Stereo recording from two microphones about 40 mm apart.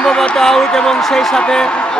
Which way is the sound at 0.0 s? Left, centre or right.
Left.